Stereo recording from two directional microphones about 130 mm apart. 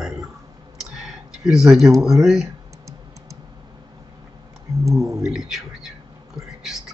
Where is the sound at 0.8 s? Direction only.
5° right (ahead or behind).